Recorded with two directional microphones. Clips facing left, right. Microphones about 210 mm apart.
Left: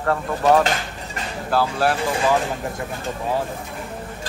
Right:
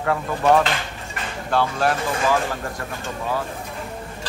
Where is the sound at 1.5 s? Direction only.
5° left (ahead or behind).